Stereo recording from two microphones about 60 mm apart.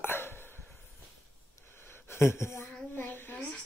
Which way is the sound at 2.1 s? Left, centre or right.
Left.